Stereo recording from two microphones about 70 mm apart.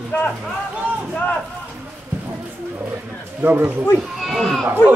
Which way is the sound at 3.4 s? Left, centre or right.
Right.